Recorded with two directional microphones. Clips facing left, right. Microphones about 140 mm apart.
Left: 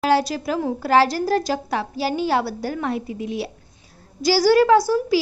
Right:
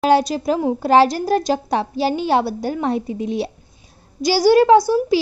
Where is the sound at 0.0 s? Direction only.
20° right (ahead or behind).